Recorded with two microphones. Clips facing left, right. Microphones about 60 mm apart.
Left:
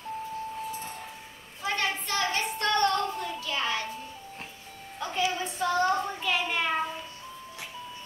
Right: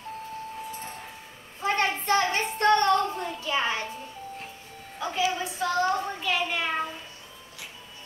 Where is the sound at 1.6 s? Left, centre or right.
Right.